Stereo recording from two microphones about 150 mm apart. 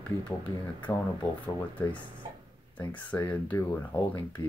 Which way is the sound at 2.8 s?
10° left (ahead or behind).